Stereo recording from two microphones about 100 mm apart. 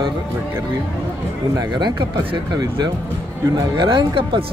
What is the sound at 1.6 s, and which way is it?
A man's voice, 45° right (ahead or behind).